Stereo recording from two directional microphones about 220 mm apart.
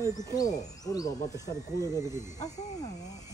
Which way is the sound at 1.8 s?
10° right (ahead or behind).